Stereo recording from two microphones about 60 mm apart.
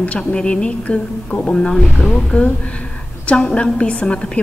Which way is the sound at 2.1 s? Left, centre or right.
Centre.